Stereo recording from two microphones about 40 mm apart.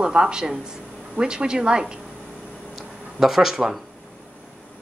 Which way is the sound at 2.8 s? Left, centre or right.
Centre.